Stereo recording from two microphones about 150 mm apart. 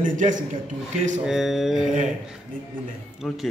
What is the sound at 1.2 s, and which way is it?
Speech, 5° right (ahead or behind).